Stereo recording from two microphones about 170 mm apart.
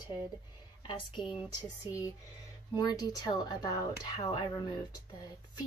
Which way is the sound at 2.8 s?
25° left (ahead or behind).